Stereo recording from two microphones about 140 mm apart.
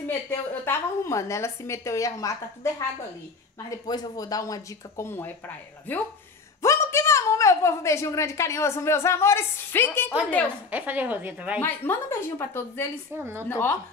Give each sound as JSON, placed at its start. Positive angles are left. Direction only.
{"t": 0.0, "sound": "a woman's voice", "side_deg": 15}
{"t": 3.8, "sound": "a woman's voice", "side_deg": 30}
{"t": 10.7, "sound": "a woman's voice", "side_deg": -10}
{"t": 11.6, "sound": "a woman's voice", "side_deg": 15}
{"t": 13.1, "sound": "a woman's voice", "side_deg": -20}
{"t": 13.5, "sound": "a woman's voice", "side_deg": 15}